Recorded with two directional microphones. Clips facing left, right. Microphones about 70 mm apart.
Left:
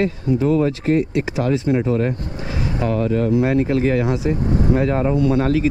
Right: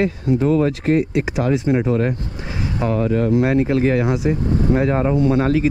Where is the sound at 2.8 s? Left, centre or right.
Right.